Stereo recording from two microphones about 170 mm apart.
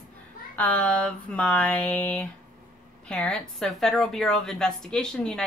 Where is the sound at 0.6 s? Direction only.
10° left (ahead or behind).